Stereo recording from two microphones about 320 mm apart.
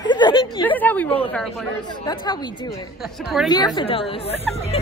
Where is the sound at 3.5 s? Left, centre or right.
Centre.